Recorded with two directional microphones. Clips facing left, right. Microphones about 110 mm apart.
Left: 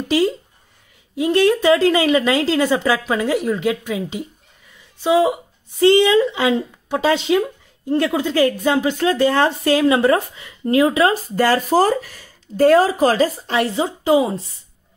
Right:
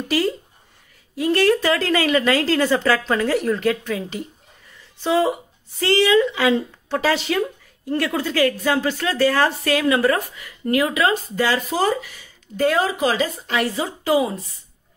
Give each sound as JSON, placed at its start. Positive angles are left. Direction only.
{"t": 1.1, "sound": "a woman's voice", "side_deg": 20}
{"t": 11.4, "sound": "speech", "side_deg": 45}